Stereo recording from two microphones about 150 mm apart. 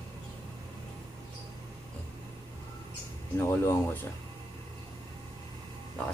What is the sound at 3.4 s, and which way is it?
Speech, 20° left (ahead or behind).